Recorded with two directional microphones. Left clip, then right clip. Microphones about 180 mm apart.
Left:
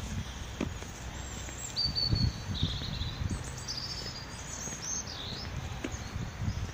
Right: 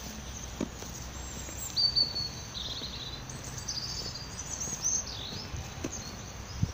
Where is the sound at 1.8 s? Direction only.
15° left (ahead or behind).